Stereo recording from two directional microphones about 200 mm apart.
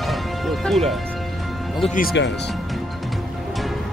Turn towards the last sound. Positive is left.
turn(degrees=0)  # may be behind; listen again after turning